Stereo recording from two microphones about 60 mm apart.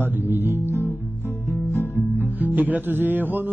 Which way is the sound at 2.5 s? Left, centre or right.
Right.